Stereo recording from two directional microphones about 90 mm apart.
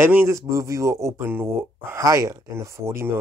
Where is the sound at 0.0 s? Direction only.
25° right (ahead or behind).